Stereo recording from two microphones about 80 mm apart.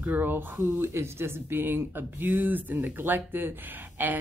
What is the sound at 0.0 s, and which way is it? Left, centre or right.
Speech, right.